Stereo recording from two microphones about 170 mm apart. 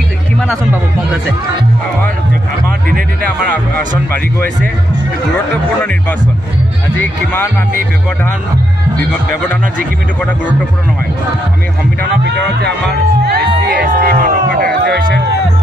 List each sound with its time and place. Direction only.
3.3 s speech: 10° left (ahead or behind)
12.0 s speech: 75° right (ahead or behind)
13.7 s music: 60° right (ahead or behind)